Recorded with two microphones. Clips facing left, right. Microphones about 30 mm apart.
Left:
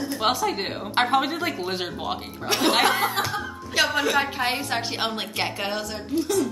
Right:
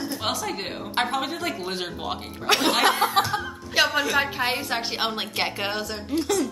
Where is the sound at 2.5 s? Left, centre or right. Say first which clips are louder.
Right 3 dB; right.